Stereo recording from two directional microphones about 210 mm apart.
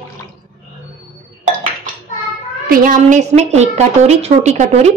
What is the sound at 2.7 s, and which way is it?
A woman's voice, 40° right (ahead or behind).